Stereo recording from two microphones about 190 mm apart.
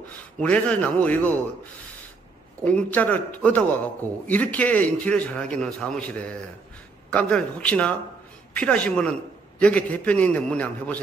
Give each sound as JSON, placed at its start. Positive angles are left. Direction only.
{"t": 0.1, "sound": "a man's voice", "side_deg": 10}
{"t": 2.6, "sound": "a man's voice", "side_deg": 10}